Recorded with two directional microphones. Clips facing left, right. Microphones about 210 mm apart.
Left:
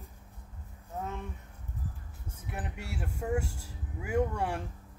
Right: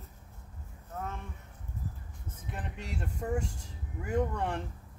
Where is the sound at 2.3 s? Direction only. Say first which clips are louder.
Left 1 dB; 10° left (ahead or behind).